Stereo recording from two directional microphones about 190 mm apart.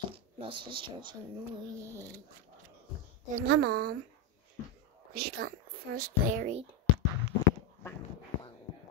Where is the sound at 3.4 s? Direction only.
55° right (ahead or behind).